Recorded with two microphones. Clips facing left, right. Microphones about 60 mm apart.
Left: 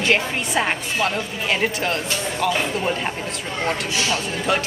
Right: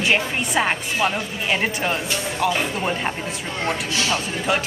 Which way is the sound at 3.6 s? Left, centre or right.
Centre.